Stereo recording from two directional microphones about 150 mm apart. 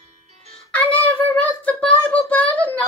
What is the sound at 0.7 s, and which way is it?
Child singing, 10° left (ahead or behind).